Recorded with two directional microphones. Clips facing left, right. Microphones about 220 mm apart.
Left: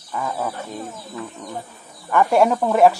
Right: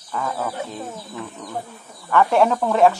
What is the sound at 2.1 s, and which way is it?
Speech, 10° left (ahead or behind).